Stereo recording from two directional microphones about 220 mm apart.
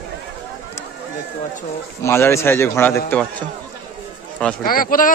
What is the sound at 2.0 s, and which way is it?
A man's voice, 10° left (ahead or behind).